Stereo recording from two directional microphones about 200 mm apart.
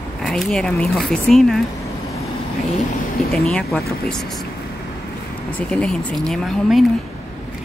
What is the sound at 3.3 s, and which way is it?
Speech, 5° left (ahead or behind).